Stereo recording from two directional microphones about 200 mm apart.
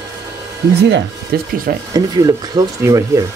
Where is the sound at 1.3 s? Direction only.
50° right (ahead or behind).